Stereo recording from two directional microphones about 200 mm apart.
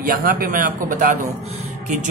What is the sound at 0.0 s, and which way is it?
Speech, 45° right (ahead or behind).